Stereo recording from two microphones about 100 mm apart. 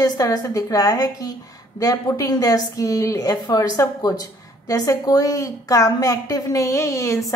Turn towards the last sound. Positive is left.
turn(degrees=30)  # may be behind; listen again after turning